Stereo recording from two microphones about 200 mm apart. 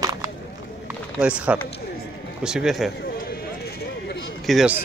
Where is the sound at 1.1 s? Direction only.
5° right (ahead or behind).